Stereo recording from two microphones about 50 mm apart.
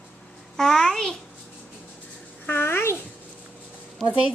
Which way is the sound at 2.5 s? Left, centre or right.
Left.